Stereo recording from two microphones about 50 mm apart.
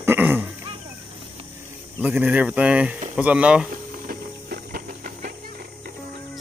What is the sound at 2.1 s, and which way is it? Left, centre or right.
Speech, right.